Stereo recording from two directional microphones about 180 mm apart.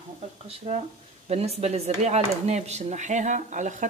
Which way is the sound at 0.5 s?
40° right (ahead or behind).